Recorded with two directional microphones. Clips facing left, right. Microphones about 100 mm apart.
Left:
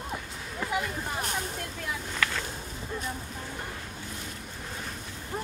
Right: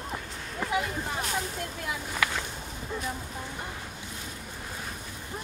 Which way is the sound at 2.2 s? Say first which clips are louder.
Right 1 dB; 10° right (ahead or behind).